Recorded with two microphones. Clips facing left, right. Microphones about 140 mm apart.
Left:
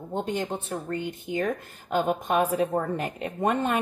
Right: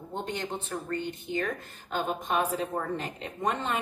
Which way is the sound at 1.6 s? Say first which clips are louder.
Left 1 dB; 10° left (ahead or behind).